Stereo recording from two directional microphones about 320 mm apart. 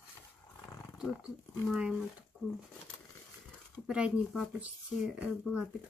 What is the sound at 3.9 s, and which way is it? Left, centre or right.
Speech, centre.